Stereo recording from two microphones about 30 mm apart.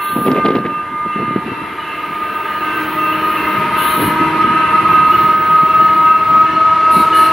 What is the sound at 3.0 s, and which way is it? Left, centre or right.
Train, centre.